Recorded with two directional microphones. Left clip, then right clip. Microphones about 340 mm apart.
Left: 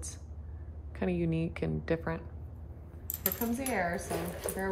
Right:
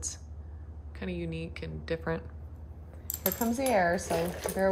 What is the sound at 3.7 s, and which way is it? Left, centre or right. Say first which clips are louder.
Speech: right 7 dB; right.